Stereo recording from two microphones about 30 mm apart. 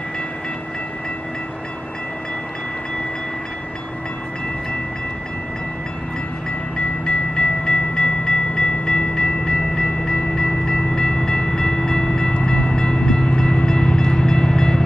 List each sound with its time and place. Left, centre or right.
7.1 s train: left